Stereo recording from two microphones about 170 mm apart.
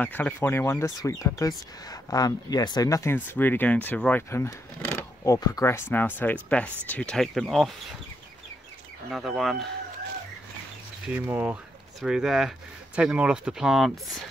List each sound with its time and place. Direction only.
0.0 s speech: 10° left (ahead or behind)
9.1 s speech: centre (ahead or behind)
11.1 s speech: 10° right (ahead or behind)